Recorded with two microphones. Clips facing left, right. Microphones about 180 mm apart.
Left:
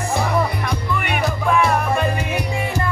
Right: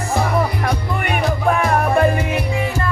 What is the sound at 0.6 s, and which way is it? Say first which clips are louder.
Music: right 2 dB; 45° right (ahead or behind).